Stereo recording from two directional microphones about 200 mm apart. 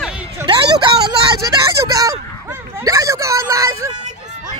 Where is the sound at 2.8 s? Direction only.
15° right (ahead or behind).